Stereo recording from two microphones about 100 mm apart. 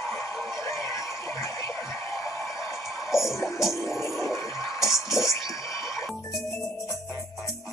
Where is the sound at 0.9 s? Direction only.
30° left (ahead or behind).